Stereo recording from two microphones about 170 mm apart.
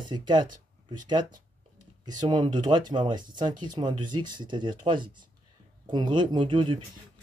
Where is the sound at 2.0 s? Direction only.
25° right (ahead or behind).